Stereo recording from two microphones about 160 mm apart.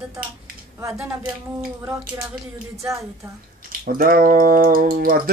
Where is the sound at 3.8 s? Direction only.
65° right (ahead or behind).